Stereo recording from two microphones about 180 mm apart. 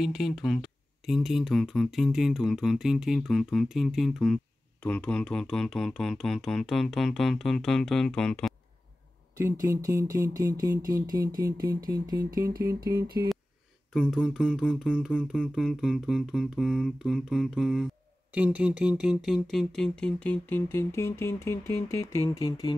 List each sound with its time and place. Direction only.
0.0 s speech: centre (ahead or behind)
9.4 s speech: 15° right (ahead or behind)
14.1 s speech: centre (ahead or behind); by 22.8 s 20° left (ahead or behind)